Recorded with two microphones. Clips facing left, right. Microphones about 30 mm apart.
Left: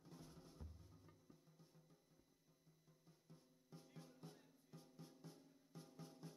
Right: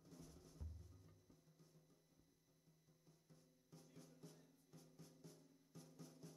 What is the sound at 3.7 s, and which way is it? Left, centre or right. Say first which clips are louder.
Music: left 3 dB; left.